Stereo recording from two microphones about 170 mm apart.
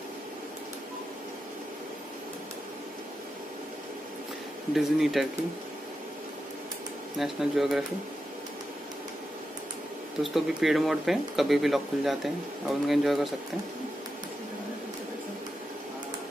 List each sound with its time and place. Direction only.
4.7 s speech: centre (ahead or behind)
7.2 s speech: centre (ahead or behind)
10.2 s speech: centre (ahead or behind)